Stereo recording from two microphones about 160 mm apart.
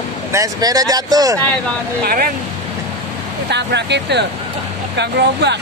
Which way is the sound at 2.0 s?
65° right (ahead or behind).